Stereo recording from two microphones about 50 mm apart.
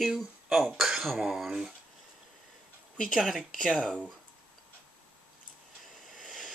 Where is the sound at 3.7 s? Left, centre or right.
Centre.